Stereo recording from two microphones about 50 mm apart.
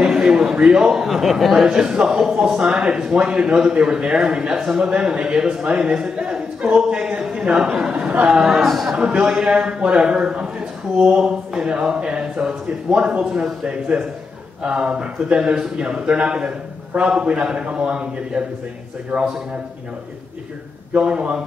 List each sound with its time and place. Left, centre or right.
0.0 s a man's voice: centre
1.7 s a man's voice: centre
6.1 s a sound: right
6.8 s a man's voice: centre
8.5 s speech: centre
8.8 s speech: centre
13.7 s a man's voice: right